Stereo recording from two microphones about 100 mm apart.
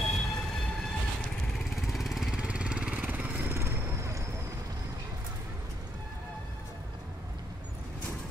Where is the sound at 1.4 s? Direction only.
5° left (ahead or behind); by 3.6 s 15° right (ahead or behind).